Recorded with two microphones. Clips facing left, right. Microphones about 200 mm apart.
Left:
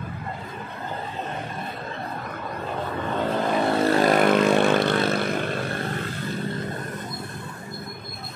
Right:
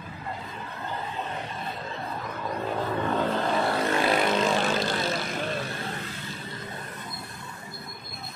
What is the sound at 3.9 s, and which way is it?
Vehicle, 45° left (ahead or behind).